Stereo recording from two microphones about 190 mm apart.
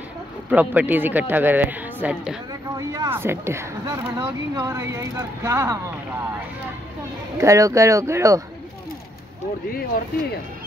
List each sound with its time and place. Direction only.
0.5 s speech: 10° right (ahead or behind)
7.3 s speech: 15° right (ahead or behind)